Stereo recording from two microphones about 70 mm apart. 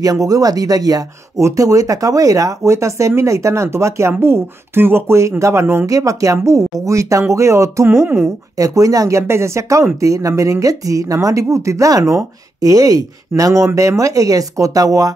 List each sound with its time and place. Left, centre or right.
0.0 s speech: right
1.4 s speech: right
5.9 s speech: right
8.5 s speech: right